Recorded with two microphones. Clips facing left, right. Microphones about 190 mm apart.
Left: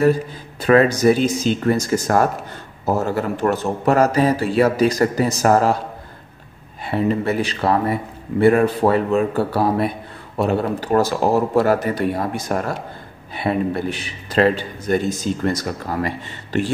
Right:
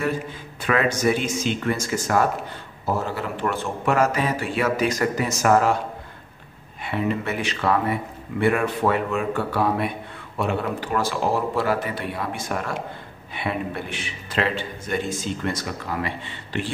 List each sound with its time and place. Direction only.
0.0 s a man's voice: 35° left (ahead or behind)
6.8 s a man's voice: 35° left (ahead or behind)